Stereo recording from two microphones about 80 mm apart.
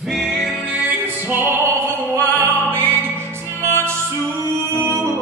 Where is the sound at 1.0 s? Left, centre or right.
Right.